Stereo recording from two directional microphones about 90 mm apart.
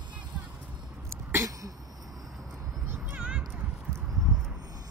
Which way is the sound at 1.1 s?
35° right (ahead or behind).